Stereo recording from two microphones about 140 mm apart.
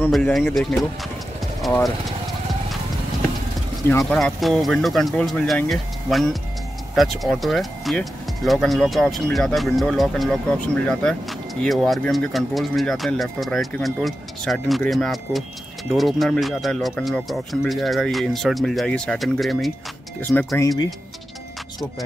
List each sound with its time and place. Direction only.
0.1 s speech: centre (ahead or behind)
4.0 s speech: centre (ahead or behind)
20.5 s speech: 25° left (ahead or behind)